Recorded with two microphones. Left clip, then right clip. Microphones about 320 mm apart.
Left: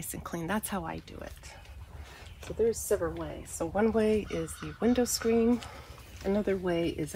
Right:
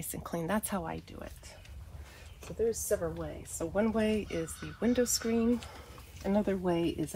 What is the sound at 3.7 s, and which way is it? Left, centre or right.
Speech, centre.